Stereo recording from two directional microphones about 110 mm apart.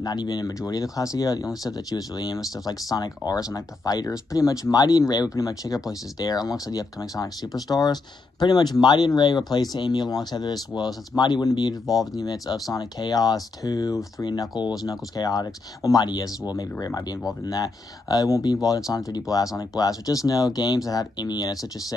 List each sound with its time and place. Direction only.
0.0 s speech: 35° left (ahead or behind)
17.5 s speech: 35° left (ahead or behind)